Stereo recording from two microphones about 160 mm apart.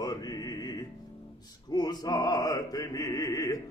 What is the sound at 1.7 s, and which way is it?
Chant, 25° left (ahead or behind).